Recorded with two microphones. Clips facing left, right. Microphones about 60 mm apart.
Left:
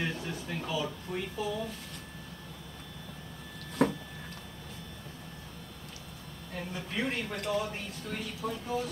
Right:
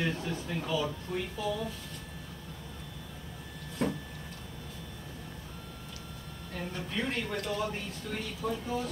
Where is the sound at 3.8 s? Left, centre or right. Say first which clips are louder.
Left 4 dB; left.